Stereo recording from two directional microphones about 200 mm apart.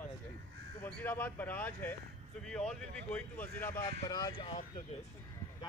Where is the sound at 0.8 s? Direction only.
10° left (ahead or behind); by 4.8 s 25° left (ahead or behind).